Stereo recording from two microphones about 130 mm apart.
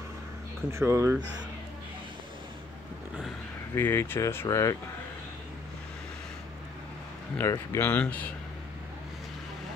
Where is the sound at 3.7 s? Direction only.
20° left (ahead or behind).